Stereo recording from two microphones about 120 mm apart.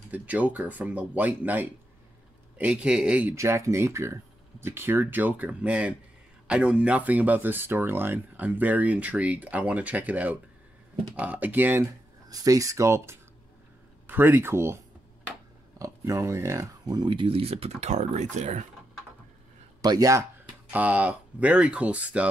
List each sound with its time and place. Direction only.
0.1 s speech: 10° right (ahead or behind)
3.3 s speech: 25° right (ahead or behind)
12.3 s speech: 30° right (ahead or behind)
15.8 s speech: 25° right (ahead or behind); by 18.7 s 75° right (ahead or behind)
19.8 s a man's voice: 30° right (ahead or behind)
20.7 s speech: 15° right (ahead or behind)